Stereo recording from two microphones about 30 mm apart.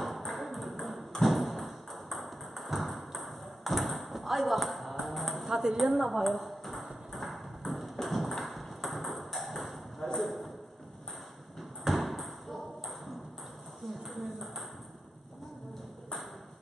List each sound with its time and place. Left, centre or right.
0.0 s ping: centre
5.5 s speech: centre
5.8 s speech: centre
7.1 s ping: centre
10.1 s a sound: centre
11.8 s ping: centre